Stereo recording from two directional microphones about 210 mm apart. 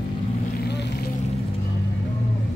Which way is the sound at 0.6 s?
50° left (ahead or behind).